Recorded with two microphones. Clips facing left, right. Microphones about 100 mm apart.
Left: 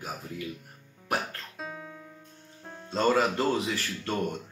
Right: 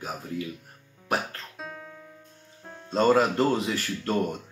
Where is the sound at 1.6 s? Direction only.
Centre (ahead or behind).